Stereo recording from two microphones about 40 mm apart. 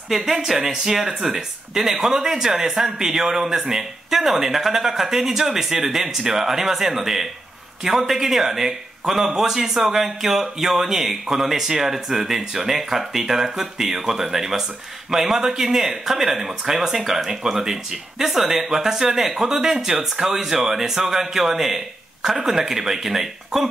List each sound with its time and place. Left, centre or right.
0.1 s speech: centre